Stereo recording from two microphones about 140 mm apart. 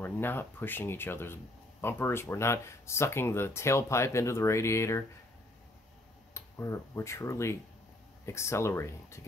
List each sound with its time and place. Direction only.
0.0 s speech: 15° left (ahead or behind)
6.3 s speech: 20° left (ahead or behind)